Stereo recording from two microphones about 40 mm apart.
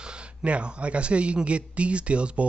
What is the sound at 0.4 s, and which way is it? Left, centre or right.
A man's voice, right.